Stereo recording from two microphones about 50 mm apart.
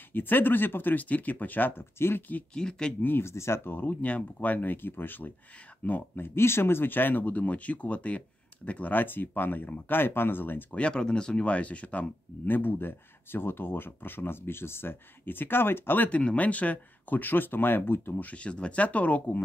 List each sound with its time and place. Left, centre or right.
0.1 s speech: left
2.0 s speech: left
2.5 s speech: centre
3.0 s speech: left
3.3 s speech: left
4.0 s speech: left
10.7 s speech: left
12.4 s speech: left
16.1 s speech: left
18.2 s speech: left